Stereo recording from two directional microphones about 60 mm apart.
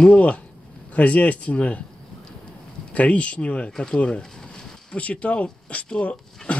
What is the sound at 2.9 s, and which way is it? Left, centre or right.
Speech, left.